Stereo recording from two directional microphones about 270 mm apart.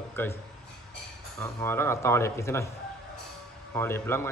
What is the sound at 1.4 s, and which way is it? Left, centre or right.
Speech, centre.